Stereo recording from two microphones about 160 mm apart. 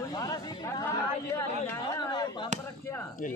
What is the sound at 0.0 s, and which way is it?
Chatter, 20° left (ahead or behind).